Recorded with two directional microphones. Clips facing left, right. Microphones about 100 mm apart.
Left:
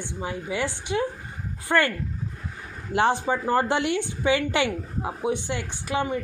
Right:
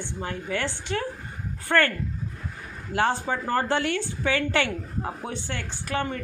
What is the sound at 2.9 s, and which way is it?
A woman's voice, 20° left (ahead or behind).